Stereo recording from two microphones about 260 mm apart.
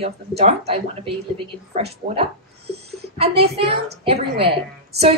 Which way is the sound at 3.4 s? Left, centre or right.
Right.